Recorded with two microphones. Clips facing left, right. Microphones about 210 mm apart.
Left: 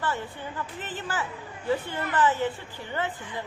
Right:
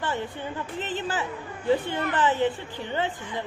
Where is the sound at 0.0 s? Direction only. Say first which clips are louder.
Right 2 dB; 20° right (ahead or behind).